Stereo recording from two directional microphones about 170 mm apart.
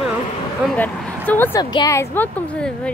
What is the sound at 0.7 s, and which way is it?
A woman's voice, 10° left (ahead or behind).